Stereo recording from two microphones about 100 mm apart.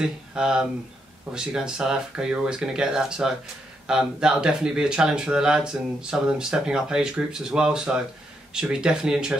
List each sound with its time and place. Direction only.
0.0 s speech: 10° right (ahead or behind)